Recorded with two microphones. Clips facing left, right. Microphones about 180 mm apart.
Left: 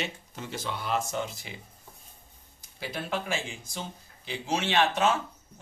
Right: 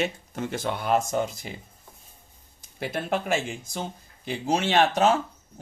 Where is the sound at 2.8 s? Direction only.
55° right (ahead or behind).